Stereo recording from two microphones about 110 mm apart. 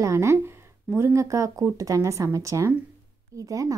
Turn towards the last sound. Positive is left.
turn(degrees=-30)  # may be behind; listen again after turning